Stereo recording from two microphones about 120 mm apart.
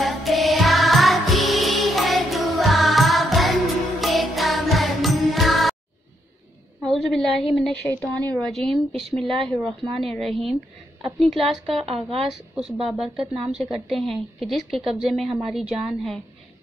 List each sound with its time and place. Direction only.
0.0 s music: centre (ahead or behind)
6.8 s a sound: centre (ahead or behind)
7.5 s a woman's voice: 5° left (ahead or behind)
11.8 s speech: 55° right (ahead or behind)
12.3 s a woman's voice: 5° right (ahead or behind)